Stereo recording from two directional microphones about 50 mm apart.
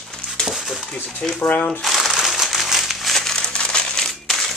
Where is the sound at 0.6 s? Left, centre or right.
Centre.